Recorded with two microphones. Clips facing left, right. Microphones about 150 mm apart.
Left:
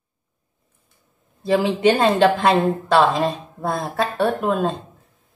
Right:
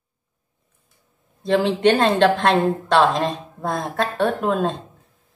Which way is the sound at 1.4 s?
10° left (ahead or behind).